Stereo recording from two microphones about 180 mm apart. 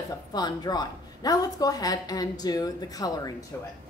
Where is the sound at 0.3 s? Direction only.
20° left (ahead or behind).